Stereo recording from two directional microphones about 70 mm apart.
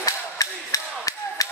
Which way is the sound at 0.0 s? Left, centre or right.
Left.